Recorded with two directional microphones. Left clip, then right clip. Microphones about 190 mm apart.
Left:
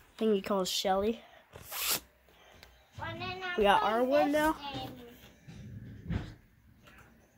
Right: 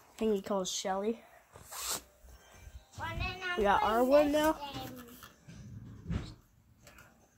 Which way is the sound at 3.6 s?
5° left (ahead or behind).